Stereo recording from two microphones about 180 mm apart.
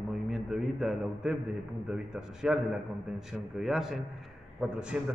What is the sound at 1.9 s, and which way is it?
A man's voice, 5° right (ahead or behind).